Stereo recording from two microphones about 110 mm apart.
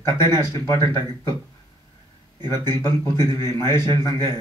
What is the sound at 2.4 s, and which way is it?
A man's voice, 40° right (ahead or behind).